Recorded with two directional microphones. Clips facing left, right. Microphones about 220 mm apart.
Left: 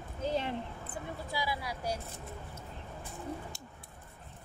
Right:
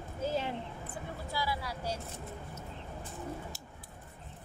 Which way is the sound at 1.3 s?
15° left (ahead or behind).